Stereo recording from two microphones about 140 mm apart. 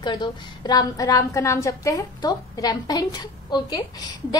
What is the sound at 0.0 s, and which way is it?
A woman's voice, 30° left (ahead or behind).